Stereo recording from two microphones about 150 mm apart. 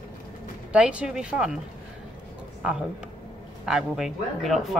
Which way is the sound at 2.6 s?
5° right (ahead or behind).